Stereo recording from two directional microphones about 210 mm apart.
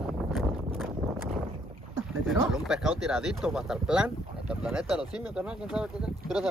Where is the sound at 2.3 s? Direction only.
Centre (ahead or behind).